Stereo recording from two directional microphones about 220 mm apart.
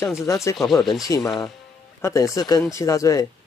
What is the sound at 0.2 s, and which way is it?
Speech, 15° left (ahead or behind).